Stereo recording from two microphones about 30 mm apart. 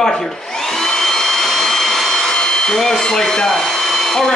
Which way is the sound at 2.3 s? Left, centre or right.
Left.